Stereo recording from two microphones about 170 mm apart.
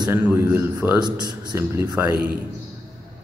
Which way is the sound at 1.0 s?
25° right (ahead or behind).